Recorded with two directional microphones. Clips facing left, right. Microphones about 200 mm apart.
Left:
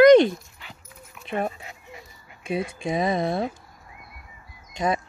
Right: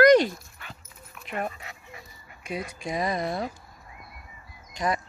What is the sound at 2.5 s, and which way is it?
Speech, 25° left (ahead or behind).